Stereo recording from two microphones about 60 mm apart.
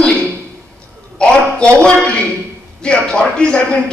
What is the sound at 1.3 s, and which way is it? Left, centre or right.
Speech, centre.